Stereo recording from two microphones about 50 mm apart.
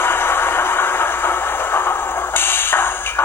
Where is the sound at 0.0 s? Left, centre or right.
Left.